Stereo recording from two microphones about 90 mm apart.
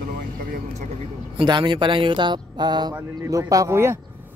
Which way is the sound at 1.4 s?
65° right (ahead or behind).